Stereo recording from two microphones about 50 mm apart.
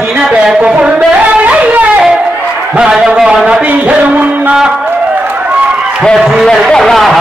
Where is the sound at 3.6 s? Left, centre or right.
Right.